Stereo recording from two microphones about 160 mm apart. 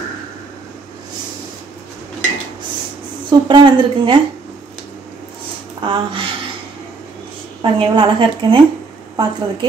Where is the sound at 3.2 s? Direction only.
30° right (ahead or behind).